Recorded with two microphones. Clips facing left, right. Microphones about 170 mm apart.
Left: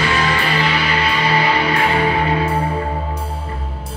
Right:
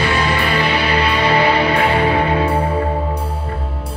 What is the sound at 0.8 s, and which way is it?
Music, 30° right (ahead or behind).